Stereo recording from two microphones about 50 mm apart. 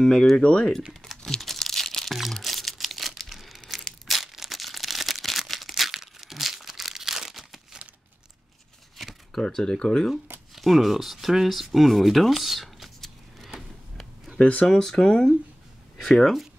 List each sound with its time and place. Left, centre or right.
0.0 s speech: centre
1.0 s crumpling: centre
4.1 s a sound: centre
8.9 s shuffling cards: centre
9.4 s speech: centre
10.5 s speech: centre
13.6 s a sound: centre
14.4 s speech: left
14.7 s speech: centre